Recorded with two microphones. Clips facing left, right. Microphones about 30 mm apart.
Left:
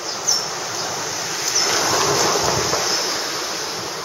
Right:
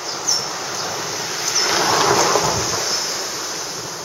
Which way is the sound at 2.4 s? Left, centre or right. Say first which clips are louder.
Left 1 dB; centre.